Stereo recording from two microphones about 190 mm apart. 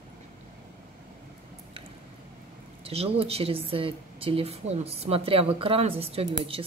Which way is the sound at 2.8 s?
30° right (ahead or behind).